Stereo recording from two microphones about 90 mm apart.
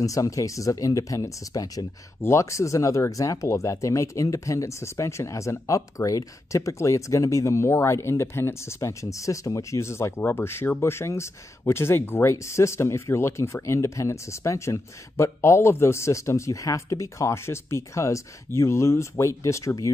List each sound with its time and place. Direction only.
0.0 s speech: 40° left (ahead or behind)